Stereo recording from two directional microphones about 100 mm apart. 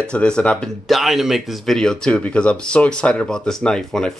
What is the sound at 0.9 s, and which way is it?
Speech, centre (ahead or behind).